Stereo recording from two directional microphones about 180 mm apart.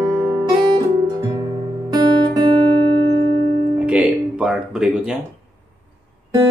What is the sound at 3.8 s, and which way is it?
Music, 5° right (ahead or behind).